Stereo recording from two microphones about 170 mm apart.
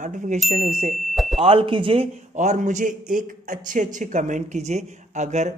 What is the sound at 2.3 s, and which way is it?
Speech, 45° right (ahead or behind).